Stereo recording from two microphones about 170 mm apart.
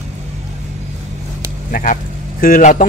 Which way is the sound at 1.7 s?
55° left (ahead or behind).